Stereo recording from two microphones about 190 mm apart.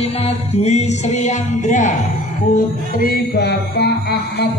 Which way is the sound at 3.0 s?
55° left (ahead or behind).